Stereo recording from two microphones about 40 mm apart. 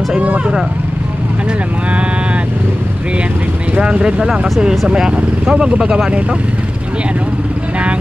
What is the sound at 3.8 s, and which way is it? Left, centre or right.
Speech, right.